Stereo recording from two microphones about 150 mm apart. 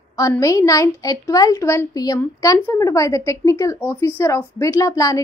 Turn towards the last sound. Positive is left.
turn(degrees=20)  # may be behind; listen again after turning